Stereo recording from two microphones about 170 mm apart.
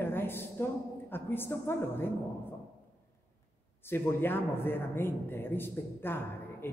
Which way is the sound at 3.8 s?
10° left (ahead or behind).